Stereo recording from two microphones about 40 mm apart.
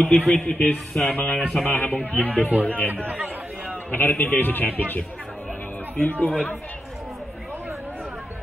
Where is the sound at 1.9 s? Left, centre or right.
Left.